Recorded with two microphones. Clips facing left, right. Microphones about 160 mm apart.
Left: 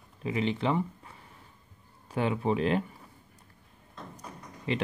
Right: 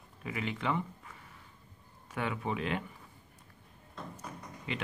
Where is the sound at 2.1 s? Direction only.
30° left (ahead or behind).